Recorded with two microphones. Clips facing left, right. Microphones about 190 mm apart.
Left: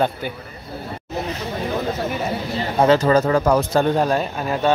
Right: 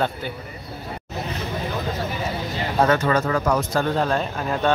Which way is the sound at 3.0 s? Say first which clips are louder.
Left 5 dB; 30° left (ahead or behind).